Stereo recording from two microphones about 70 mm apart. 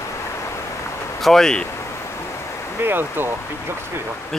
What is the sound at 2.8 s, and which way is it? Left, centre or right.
Speech, right.